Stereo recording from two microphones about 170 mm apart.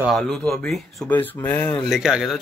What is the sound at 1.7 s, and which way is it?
Speech, centre (ahead or behind).